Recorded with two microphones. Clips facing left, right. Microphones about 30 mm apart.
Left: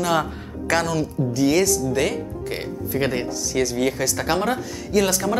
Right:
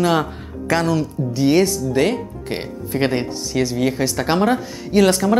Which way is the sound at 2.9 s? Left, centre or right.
Right.